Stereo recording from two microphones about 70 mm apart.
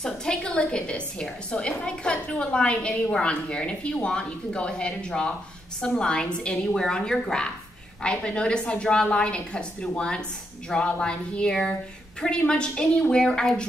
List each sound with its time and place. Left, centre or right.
0.0 s a woman's voice: centre